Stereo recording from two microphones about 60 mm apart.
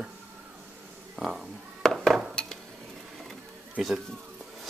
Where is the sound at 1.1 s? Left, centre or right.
Centre.